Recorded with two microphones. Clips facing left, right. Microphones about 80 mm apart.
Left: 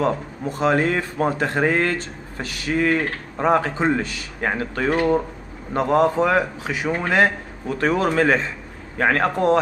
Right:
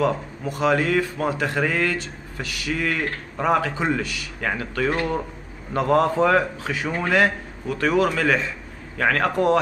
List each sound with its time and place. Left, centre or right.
0.0 s speech: left